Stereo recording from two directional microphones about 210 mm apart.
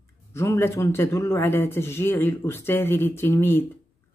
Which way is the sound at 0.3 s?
15° left (ahead or behind).